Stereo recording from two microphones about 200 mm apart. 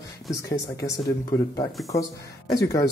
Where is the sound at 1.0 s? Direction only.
15° left (ahead or behind).